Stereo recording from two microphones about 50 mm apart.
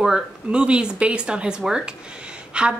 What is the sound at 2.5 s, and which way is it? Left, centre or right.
Speech, right.